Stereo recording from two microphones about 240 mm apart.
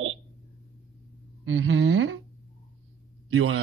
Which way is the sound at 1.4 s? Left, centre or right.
Right.